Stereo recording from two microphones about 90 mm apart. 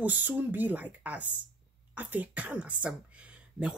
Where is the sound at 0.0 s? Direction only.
15° right (ahead or behind).